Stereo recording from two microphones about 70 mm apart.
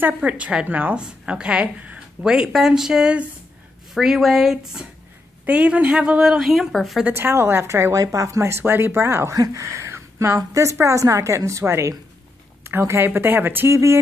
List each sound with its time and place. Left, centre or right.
0.0 s a woman's voice: right
5.4 s a woman's voice: centre
7.1 s a woman's voice: right
8.5 s speech: right
9.3 s a woman's voice: right